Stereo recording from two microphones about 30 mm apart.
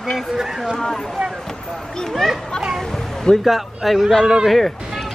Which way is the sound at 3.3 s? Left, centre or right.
Left.